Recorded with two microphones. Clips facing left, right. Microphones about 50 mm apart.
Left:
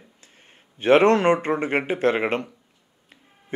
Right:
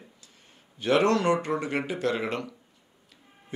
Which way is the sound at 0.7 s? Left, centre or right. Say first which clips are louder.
Left 7 dB; left.